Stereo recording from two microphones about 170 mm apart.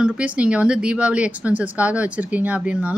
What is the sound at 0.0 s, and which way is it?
A woman's voice, 5° right (ahead or behind).